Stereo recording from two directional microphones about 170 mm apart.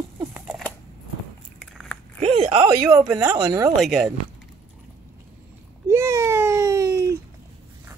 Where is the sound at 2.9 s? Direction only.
15° right (ahead or behind).